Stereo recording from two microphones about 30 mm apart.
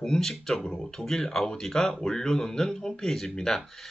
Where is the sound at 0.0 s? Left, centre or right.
Left.